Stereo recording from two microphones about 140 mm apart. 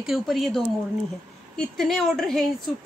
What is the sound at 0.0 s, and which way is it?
Speech, centre (ahead or behind).